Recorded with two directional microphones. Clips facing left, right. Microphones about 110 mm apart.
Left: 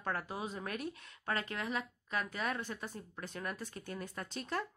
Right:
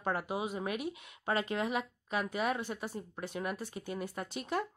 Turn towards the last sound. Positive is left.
turn(degrees=-10)  # may be behind; listen again after turning